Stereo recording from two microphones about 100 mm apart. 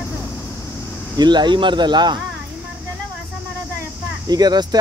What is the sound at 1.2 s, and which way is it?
Speech, 45° right (ahead or behind).